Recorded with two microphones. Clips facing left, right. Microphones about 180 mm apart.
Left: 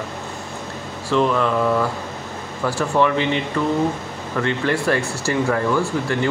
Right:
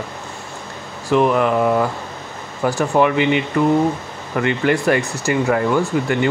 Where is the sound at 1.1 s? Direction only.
15° right (ahead or behind).